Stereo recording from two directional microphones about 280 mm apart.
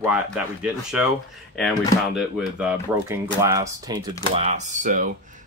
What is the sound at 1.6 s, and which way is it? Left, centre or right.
Speech, centre.